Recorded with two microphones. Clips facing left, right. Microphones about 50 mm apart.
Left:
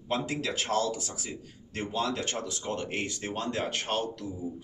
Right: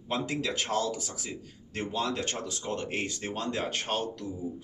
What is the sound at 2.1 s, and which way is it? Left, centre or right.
A man's voice, left.